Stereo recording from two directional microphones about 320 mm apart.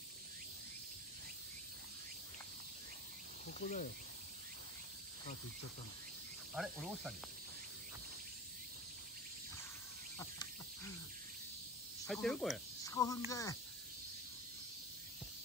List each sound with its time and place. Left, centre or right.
3.4 s cricket: left
6.5 s cricket: centre
10.1 s cricket: centre
12.0 s speech: centre